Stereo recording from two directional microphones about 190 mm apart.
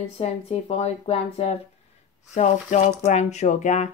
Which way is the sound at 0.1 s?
30° left (ahead or behind).